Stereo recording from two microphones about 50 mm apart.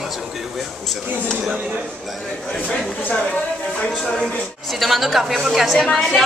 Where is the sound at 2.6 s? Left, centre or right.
Left.